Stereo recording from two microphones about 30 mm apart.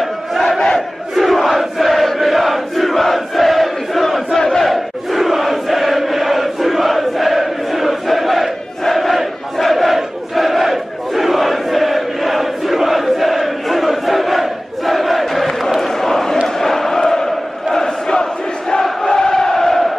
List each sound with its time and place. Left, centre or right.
0.4 s crowd: centre
1.1 s crowd: centre
4.4 s battle cry: centre
4.6 s chant: centre
9.6 s battle cry: centre
9.9 s crowd: centre
15.8 s a sound: centre
16.4 s chant: centre
17.7 s crowd: left